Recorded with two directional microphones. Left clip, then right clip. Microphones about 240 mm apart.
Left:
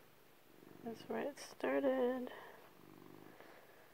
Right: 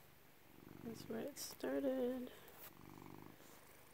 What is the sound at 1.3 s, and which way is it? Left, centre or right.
Speech, centre.